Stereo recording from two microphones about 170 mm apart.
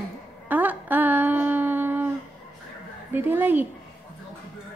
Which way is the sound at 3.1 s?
10° right (ahead or behind).